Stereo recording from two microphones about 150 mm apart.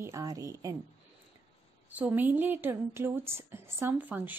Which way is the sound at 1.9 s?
10° right (ahead or behind).